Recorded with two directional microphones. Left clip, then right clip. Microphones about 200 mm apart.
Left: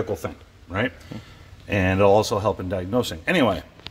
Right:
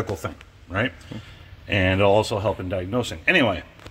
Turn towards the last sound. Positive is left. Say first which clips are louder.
# right 1 dB
turn(degrees=30)  # may be behind; listen again after turning